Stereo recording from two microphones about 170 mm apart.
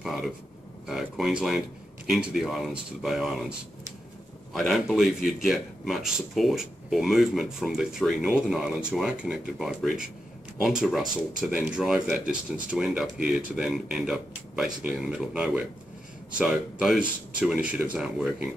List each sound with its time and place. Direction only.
0.0 s speech: centre (ahead or behind)
4.6 s speech: centre (ahead or behind)